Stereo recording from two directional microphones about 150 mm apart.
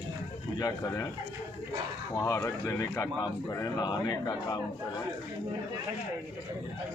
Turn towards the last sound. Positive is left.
turn(degrees=30)  # may be behind; listen again after turning